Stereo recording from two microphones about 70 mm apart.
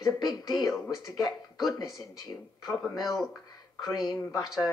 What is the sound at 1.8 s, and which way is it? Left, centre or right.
Speech, left.